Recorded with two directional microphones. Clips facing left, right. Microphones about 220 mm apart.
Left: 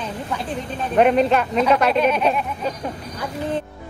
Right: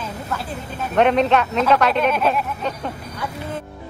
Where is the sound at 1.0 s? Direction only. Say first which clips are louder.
Even; 5° left (ahead or behind).